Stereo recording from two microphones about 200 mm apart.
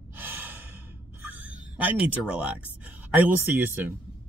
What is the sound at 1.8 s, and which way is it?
Speech, 5° right (ahead or behind).